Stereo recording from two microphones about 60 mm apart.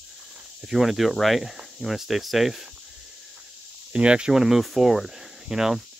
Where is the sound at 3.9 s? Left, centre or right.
Centre.